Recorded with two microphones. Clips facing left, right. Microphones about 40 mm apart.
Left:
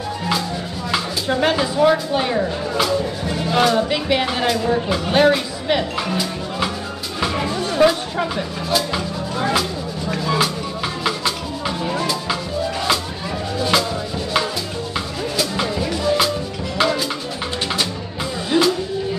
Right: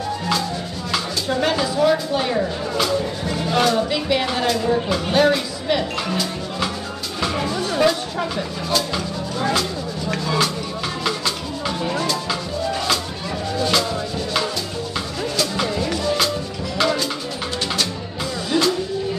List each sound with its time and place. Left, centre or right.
0.9 s speech: left
3.4 s music: centre
5.1 s speech: left
7.2 s music: centre
8.2 s a sound: centre
10.2 s music: centre
13.6 s music: centre
18.6 s music: left